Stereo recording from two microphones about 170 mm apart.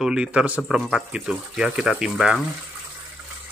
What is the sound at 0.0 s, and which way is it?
Speech, 5° right (ahead or behind).